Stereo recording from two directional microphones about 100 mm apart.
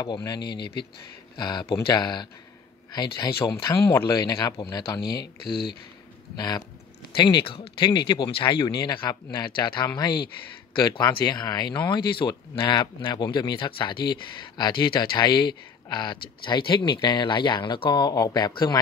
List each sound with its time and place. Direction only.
0.0 s speech: 45° left (ahead or behind)
6.3 s speech: 45° left (ahead or behind)